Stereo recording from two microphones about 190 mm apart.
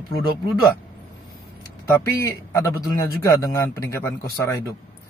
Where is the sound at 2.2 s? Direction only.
20° left (ahead or behind).